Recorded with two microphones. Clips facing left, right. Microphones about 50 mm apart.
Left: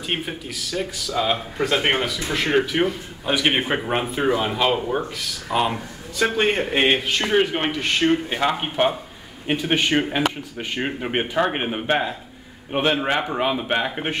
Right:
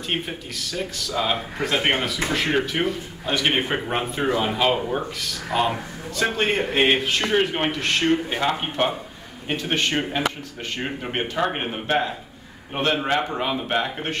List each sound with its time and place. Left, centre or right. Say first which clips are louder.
0.3 s a man's voice: left 2 dB; centre